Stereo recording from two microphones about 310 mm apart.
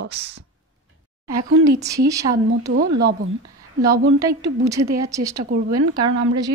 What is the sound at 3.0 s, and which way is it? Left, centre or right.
Speech, right.